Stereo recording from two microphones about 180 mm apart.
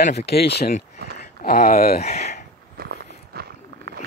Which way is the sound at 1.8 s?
55° left (ahead or behind).